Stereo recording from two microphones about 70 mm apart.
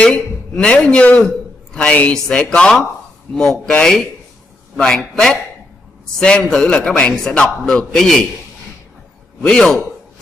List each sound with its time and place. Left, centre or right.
0.0 s a man's voice: centre
9.4 s a man's voice: centre